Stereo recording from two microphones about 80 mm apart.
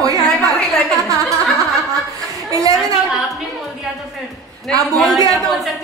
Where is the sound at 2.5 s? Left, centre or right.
Right.